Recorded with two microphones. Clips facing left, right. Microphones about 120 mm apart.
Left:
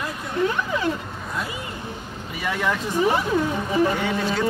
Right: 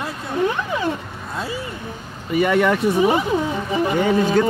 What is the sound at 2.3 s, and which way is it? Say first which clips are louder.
Speech: right 9 dB; 60° right (ahead or behind).